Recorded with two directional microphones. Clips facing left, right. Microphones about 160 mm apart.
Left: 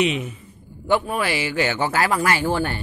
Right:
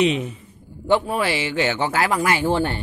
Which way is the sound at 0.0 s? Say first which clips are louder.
Right 2 dB; 35° right (ahead or behind).